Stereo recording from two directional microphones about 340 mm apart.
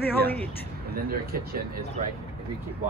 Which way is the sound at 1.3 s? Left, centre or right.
Right.